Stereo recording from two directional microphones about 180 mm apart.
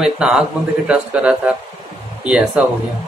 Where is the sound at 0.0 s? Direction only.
5° right (ahead or behind).